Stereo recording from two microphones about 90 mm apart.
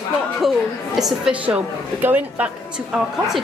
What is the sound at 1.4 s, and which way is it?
A woman's voice, 15° right (ahead or behind).